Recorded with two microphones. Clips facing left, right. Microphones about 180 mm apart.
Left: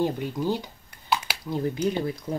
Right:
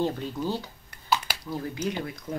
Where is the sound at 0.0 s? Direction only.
15° left (ahead or behind).